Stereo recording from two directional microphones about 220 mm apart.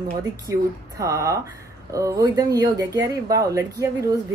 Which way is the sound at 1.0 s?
15° right (ahead or behind).